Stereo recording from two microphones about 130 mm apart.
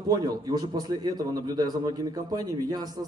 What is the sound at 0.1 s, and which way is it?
A man's voice, 30° right (ahead or behind).